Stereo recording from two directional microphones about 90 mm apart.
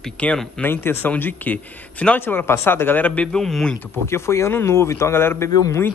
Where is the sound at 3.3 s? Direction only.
5° left (ahead or behind).